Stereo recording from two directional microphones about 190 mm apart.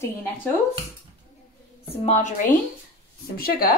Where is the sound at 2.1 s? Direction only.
40° left (ahead or behind).